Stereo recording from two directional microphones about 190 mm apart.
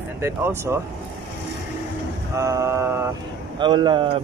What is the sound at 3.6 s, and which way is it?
Speech, 25° right (ahead or behind).